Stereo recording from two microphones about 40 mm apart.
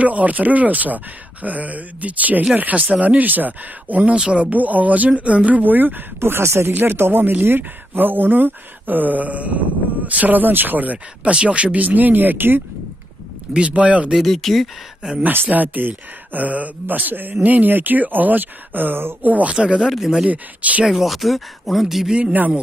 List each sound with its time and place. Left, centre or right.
0.0 s speech: right
4.5 s speech: right
6.1 s speech: right
6.8 s speech: right
11.3 s speech: right
13.5 s speech: right
14.2 s speech: centre
15.5 s speech: right
16.8 s speech: right
19.2 s speech: right
19.6 s speech: right
20.8 s speech: centre
22.3 s speech: right